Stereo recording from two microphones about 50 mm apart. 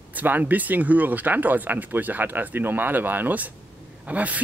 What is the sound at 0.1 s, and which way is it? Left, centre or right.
Speech, right.